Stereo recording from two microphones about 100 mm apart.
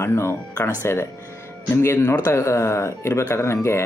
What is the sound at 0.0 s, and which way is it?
Speech, 25° left (ahead or behind).